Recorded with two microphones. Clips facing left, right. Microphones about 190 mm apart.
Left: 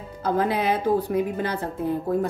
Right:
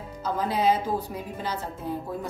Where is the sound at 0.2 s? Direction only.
60° left (ahead or behind).